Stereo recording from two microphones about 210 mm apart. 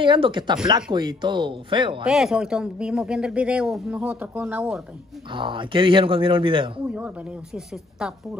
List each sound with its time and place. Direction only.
0.0 s speech: 25° right (ahead or behind)
2.0 s speech: centre (ahead or behind)
5.3 s speech: 25° right (ahead or behind)
6.9 s speech: 5° right (ahead or behind)